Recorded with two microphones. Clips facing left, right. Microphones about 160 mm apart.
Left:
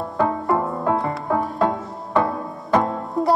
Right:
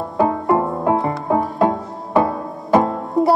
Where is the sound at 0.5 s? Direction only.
20° right (ahead or behind).